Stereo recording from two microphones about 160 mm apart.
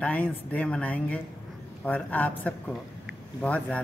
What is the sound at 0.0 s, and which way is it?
A man's voice, 10° left (ahead or behind).